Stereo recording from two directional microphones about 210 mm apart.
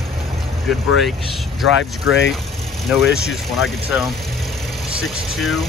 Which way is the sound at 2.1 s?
55° left (ahead or behind).